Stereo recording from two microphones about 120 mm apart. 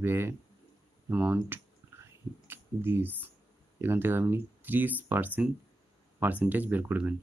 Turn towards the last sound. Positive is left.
turn(degrees=-15)  # may be behind; listen again after turning